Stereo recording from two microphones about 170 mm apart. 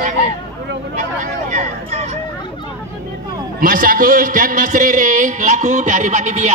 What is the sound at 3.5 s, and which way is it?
A man's voice, 55° right (ahead or behind).